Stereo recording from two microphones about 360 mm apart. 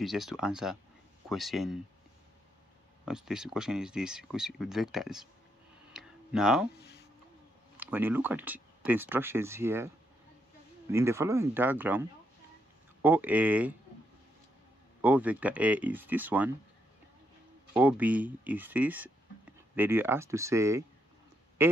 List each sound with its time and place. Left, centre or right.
0.0 s speech: centre
3.1 s speech: centre
5.9 s a sound: centre
6.8 s a sound: left
7.7 s speech: centre
15.0 s speech: centre
17.7 s speech: centre
21.6 s quack: centre